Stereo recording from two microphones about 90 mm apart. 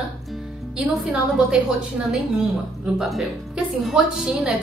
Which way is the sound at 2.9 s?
Centre (ahead or behind).